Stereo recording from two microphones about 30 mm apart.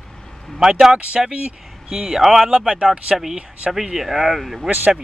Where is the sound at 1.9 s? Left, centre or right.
Centre.